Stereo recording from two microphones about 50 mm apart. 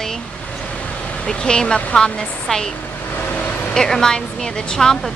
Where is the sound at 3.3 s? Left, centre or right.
Left.